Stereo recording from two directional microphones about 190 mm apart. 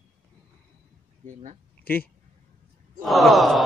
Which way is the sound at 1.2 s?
40° right (ahead or behind).